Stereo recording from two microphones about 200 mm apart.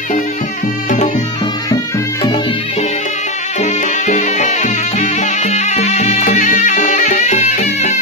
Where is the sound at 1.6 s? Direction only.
20° left (ahead or behind).